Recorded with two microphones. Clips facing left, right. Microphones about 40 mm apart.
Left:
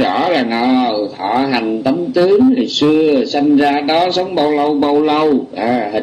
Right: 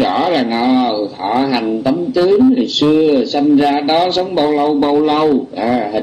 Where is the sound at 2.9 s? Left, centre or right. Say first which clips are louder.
Even; centre.